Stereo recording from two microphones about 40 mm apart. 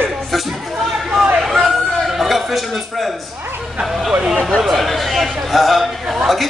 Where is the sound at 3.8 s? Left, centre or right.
Centre.